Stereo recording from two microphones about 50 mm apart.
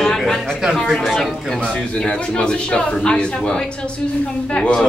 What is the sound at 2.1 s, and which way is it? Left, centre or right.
Speech, left.